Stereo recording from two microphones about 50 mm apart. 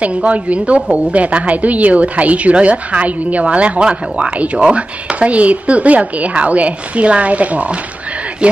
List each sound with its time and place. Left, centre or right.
0.0 s speech: right